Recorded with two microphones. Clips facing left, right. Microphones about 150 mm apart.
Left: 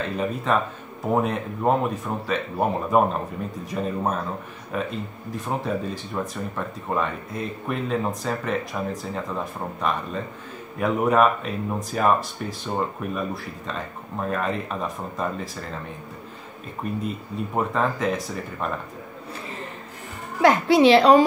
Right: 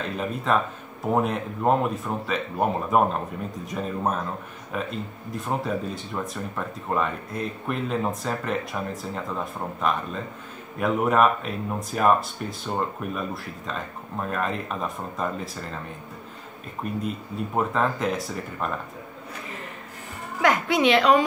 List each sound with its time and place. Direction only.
0.2 s speech: centre (ahead or behind)
16.8 s speech: centre (ahead or behind)
20.4 s a woman's voice: 30° left (ahead or behind)